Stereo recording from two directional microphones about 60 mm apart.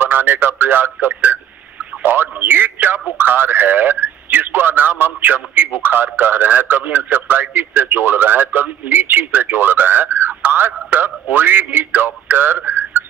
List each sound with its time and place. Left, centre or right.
0.0 s a man's voice: right